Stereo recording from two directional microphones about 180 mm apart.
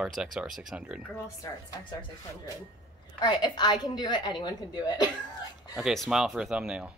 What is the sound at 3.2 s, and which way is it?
A woman's voice, 25° left (ahead or behind).